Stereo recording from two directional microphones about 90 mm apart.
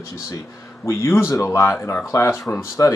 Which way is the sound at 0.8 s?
30° left (ahead or behind).